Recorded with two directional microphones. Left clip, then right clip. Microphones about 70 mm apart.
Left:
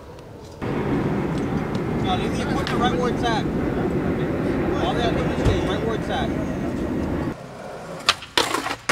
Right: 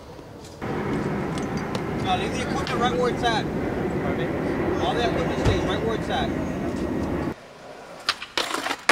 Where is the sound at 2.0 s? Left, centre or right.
Centre.